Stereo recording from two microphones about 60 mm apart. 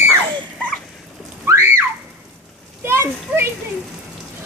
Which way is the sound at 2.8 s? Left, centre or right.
Right.